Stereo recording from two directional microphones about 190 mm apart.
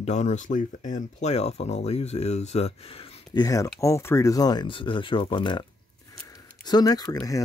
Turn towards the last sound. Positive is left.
turn(degrees=15)  # may be behind; listen again after turning